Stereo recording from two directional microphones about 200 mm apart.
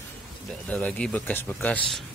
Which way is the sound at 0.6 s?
5° left (ahead or behind).